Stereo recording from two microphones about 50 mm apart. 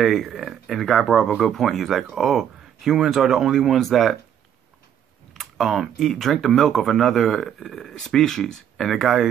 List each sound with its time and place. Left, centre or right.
0.0 s speech: centre
5.3 s computer keyboard: centre
5.9 s speech: centre
8.7 s speech: centre